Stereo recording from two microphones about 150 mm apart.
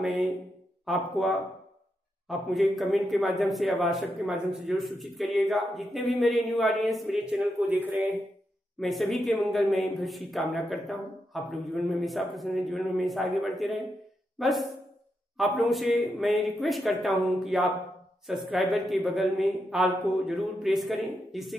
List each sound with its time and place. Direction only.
0.0 s a man's voice: 5° right (ahead or behind)
8.7 s a man's voice: centre (ahead or behind)